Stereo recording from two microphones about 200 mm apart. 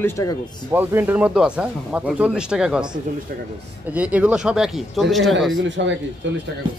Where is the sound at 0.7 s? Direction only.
10° right (ahead or behind).